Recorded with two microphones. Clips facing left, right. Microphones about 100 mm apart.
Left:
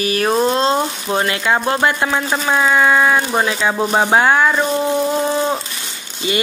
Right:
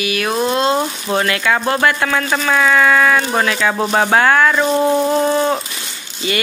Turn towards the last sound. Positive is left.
turn(degrees=25)  # may be behind; listen again after turning